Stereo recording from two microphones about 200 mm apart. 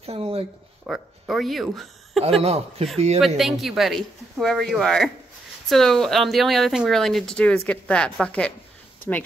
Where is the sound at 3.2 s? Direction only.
Centre (ahead or behind).